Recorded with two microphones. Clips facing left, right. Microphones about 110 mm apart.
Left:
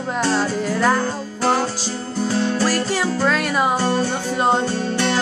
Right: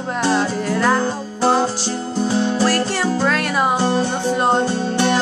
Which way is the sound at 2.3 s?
25° right (ahead or behind).